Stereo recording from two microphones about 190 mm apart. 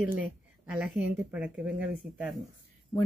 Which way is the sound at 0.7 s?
5° right (ahead or behind).